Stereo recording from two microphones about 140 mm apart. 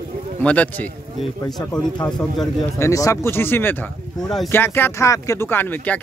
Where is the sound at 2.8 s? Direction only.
25° left (ahead or behind).